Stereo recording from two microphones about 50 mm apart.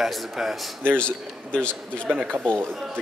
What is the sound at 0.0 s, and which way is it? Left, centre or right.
Speech, centre.